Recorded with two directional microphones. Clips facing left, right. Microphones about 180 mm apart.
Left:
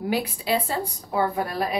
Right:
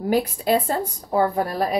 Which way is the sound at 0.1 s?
45° right (ahead or behind).